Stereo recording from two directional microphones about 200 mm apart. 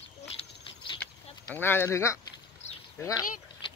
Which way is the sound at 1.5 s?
10° left (ahead or behind).